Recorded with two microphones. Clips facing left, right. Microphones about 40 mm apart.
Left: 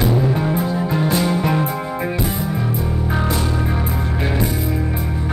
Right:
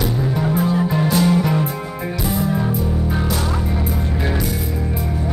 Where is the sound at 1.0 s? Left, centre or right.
Left.